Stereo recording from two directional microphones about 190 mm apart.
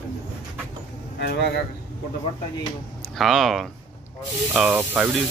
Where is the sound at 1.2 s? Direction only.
60° left (ahead or behind).